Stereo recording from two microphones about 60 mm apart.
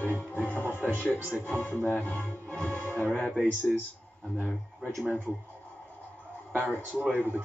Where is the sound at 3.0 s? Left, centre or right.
Centre.